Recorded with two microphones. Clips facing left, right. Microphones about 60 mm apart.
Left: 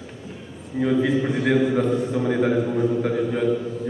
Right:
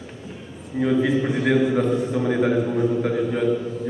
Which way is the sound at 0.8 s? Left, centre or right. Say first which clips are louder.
Even; centre.